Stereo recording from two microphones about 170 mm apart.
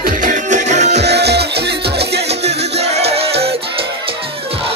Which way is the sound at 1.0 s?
80° right.